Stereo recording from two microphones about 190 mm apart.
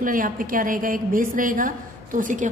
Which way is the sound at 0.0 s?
45° right (ahead or behind).